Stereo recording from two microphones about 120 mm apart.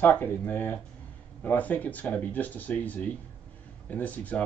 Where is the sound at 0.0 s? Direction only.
15° left (ahead or behind).